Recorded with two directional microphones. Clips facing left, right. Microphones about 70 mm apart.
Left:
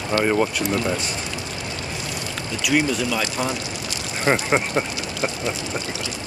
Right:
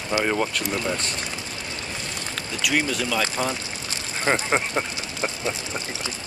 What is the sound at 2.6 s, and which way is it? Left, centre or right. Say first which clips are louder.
Speech: left 3 dB; centre.